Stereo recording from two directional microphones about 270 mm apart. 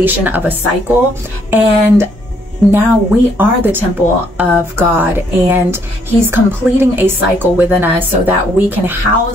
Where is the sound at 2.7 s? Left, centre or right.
Centre.